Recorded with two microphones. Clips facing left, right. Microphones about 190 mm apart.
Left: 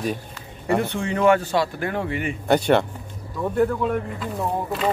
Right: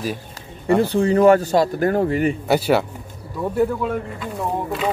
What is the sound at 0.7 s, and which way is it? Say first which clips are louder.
Speech: right 8 dB; 35° right (ahead or behind).